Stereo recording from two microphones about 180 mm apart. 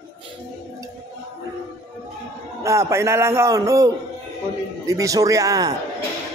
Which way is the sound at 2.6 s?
15° right (ahead or behind).